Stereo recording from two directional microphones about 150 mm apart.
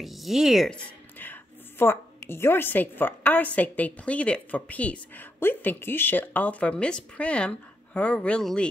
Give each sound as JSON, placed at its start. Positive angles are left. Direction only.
{"t": 0.0, "sound": "speech", "side_deg": 0}
{"t": 1.1, "sound": "a woman's voice", "side_deg": 10}